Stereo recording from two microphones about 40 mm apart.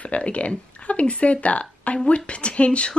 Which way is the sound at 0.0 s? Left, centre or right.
Left.